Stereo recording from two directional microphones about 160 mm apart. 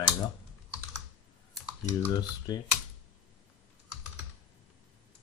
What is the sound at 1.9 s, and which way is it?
Speech, 20° left (ahead or behind).